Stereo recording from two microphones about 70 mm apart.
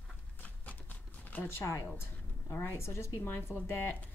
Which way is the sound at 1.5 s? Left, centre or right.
Left.